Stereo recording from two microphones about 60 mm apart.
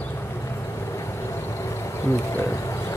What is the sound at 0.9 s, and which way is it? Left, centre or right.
Insect, left.